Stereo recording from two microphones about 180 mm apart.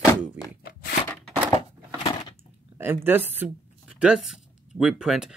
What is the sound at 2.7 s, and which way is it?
Speech, 10° right (ahead or behind).